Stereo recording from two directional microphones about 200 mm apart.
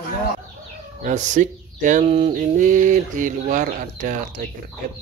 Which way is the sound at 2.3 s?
40° right (ahead or behind).